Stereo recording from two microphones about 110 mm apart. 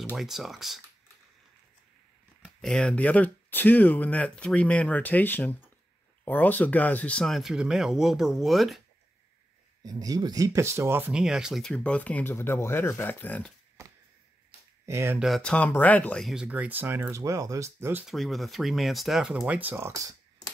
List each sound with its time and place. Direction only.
0.1 s speech: 5° right (ahead or behind)
2.4 s speech: 5° left (ahead or behind)
9.8 s speech: 35° right (ahead or behind); by 11.1 s 20° right (ahead or behind)
11.1 s speech: 5° right (ahead or behind)
11.6 s speech: 5° left (ahead or behind)
14.9 s speech: 25° right (ahead or behind)
15.1 s speech: centre (ahead or behind)
15.4 s speech: 10° left (ahead or behind)
16.2 s speech: centre (ahead or behind)
16.4 s speech: 15° right (ahead or behind)
18.0 s speech: centre (ahead or behind); by 19.9 s 15° right (ahead or behind)
19.9 s speech: 30° right (ahead or behind)